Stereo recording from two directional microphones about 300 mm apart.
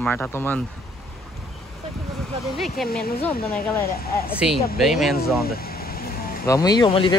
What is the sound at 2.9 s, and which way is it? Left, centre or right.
Speech, left.